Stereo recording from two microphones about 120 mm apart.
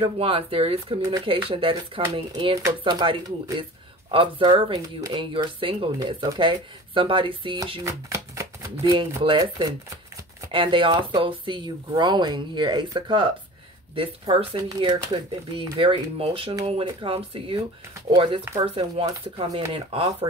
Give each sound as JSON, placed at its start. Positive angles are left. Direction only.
{"t": 0.0, "sound": "speech", "side_deg": -50}
{"t": 7.8, "sound": "shuffling cards", "side_deg": -25}
{"t": 8.8, "sound": "speech", "side_deg": -45}